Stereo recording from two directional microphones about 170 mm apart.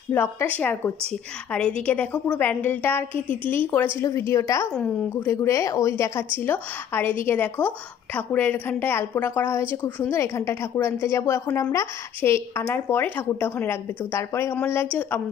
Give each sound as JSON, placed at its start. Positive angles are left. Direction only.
{"t": 0.1, "sound": "speech", "side_deg": 10}